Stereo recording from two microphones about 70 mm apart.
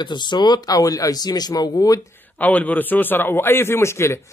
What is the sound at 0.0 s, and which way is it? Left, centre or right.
Speech, left.